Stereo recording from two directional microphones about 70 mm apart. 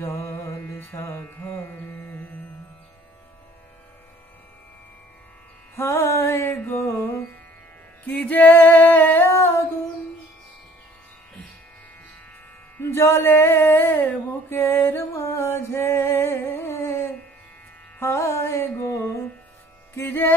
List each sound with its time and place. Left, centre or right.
0.0 s carnatic music: left
5.8 s music: left
8.0 s music: left
12.7 s a sound: left
17.9 s music: left
20.0 s music: left